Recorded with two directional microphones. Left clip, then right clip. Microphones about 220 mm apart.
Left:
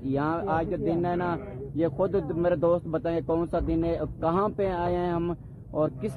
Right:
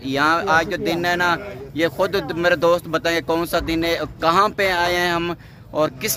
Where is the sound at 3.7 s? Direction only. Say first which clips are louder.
Right 7 dB; 15° right (ahead or behind).